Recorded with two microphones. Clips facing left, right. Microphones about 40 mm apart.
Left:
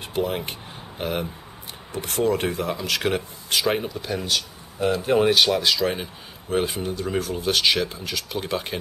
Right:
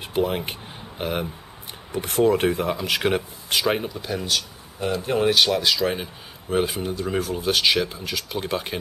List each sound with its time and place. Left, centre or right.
0.0 s speech: centre